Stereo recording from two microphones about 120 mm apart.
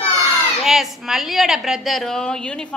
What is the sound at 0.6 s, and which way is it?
A woman's voice, centre (ahead or behind).